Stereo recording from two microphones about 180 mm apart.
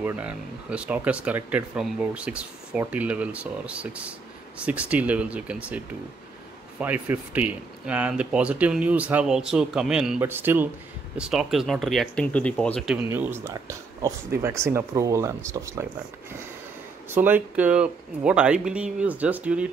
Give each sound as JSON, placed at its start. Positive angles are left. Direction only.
{"t": 0.0, "sound": "speech", "side_deg": -10}
{"t": 6.8, "sound": "speech", "side_deg": -10}
{"t": 12.9, "sound": "speech", "side_deg": -10}
{"t": 17.1, "sound": "speech", "side_deg": -10}